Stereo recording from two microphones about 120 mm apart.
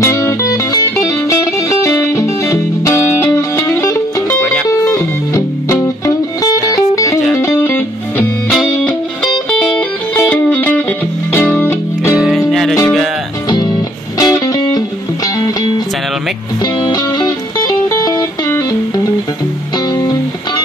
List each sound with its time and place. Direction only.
0.0 s music: 25° left (ahead or behind)
8.5 s music: 5° left (ahead or behind)
12.2 s music: 5° right (ahead or behind)
13.5 s music: 35° left (ahead or behind)
16.6 s music: 35° left (ahead or behind)
19.9 s music: 35° left (ahead or behind)